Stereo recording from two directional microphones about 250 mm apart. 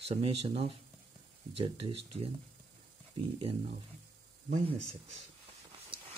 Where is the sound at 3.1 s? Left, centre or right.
Right.